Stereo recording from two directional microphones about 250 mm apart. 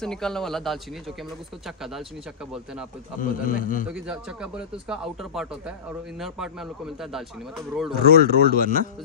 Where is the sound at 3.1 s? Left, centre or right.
Left.